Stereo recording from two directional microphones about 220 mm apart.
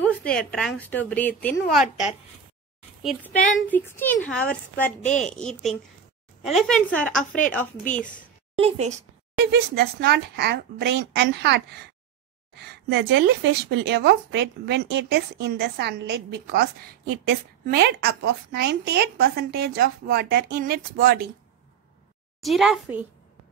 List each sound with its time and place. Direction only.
0.0 s a woman's voice: 5° left (ahead or behind)
8.5 s a woman's voice: 30° right (ahead or behind)
9.4 s a woman's voice: 50° right (ahead or behind)
22.4 s a woman's voice: centre (ahead or behind)